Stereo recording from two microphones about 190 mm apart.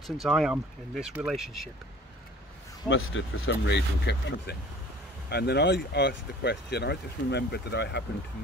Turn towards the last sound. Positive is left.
turn(degrees=65)  # may be behind; listen again after turning